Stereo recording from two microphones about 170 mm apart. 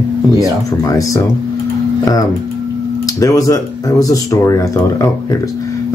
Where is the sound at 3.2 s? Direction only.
20° left (ahead or behind).